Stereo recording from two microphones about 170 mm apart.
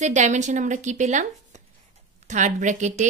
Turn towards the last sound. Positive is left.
turn(degrees=-45)  # may be behind; listen again after turning